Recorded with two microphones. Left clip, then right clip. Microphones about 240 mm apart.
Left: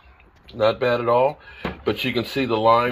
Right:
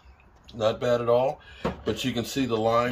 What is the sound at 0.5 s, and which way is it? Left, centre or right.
Speech, left.